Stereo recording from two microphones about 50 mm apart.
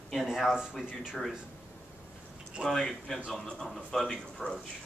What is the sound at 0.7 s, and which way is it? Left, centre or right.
Speech, centre.